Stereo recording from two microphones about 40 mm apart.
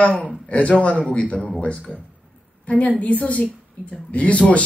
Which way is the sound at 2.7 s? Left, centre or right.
Left.